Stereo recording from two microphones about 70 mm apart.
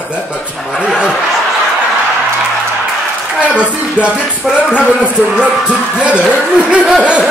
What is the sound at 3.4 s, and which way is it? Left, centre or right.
Music, centre.